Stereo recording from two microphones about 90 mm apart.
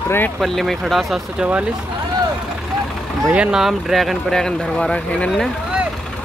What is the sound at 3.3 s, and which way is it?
Speech, 10° right (ahead or behind).